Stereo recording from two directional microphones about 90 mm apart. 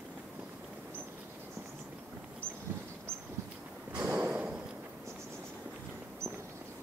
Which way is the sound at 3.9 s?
20° right (ahead or behind).